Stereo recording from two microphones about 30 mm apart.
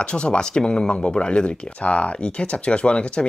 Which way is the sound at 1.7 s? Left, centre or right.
Left.